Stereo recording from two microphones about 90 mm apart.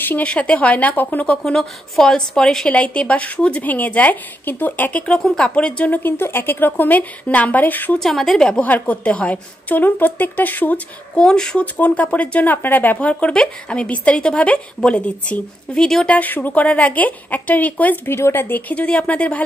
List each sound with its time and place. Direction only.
0.0 s a woman's voice: 15° left (ahead or behind)
6.0 s a woman's voice: 25° left (ahead or behind)
8.0 s a woman's voice: centre (ahead or behind); by 10.8 s 20° left (ahead or behind)
11.1 s a woman's voice: 5° left (ahead or behind)
16.2 s a woman's voice: 20° left (ahead or behind)